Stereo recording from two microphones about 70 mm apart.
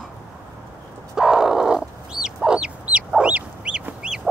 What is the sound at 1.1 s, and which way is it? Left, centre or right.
Grunt, centre.